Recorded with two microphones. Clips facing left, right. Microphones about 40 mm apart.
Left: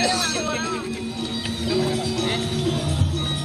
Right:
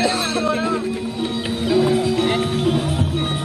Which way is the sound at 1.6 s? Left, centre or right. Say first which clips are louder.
Right 7 dB; right.